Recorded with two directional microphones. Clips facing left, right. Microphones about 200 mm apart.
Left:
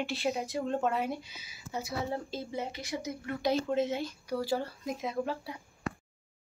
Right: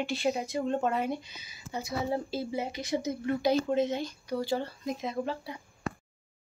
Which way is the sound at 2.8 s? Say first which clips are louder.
Right 6 dB; 20° right (ahead or behind).